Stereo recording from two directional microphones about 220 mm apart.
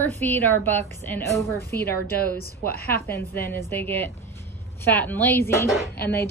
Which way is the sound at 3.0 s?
10° left (ahead or behind).